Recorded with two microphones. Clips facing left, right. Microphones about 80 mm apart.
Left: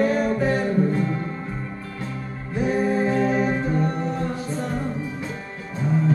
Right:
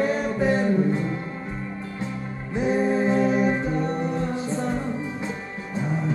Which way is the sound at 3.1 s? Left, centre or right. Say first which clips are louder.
Even; left.